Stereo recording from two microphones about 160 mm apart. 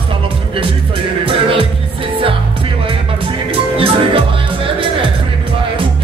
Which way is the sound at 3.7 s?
35° right (ahead or behind).